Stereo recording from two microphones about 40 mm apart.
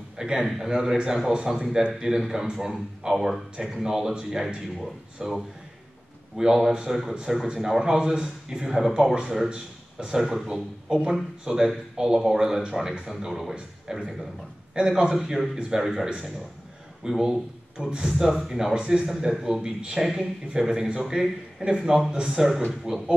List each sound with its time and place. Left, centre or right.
0.2 s speech: centre
3.8 s a man's voice: centre
20.0 s a man's voice: centre